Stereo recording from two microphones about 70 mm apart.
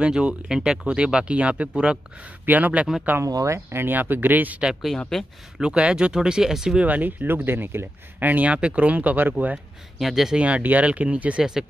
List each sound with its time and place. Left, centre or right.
0.0 s speech: centre
3.3 s speech: right
3.5 s speech: right
5.1 s speech: centre
5.6 s speech: centre
6.9 s speech: right
9.9 s speech: centre
10.4 s speech: right